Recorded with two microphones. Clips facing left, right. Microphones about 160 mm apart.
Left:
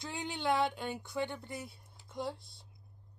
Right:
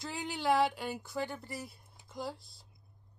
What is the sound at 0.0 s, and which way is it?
Speech, centre (ahead or behind).